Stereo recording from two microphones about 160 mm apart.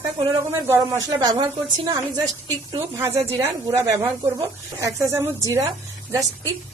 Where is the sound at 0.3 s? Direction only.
20° right (ahead or behind).